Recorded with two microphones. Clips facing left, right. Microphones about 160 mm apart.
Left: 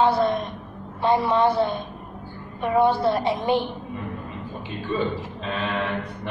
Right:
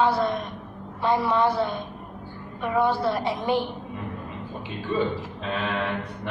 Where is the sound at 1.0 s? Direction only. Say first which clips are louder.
Left 2 dB; 25° left (ahead or behind).